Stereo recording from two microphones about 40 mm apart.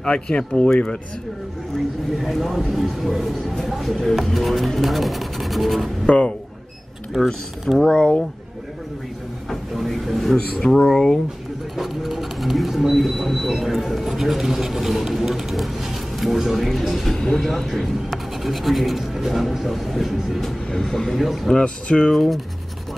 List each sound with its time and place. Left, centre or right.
0.0 s speech: left
2.1 s speech: centre
6.0 s speech: left
7.1 s speech: centre
7.9 s speech: left
9.8 s a sound: centre
10.3 s speech: centre
11.7 s speech: centre
17.1 s speech: centre
20.7 s speech: centre
21.2 s speech: centre
21.5 s speech: left
22.1 s speech: centre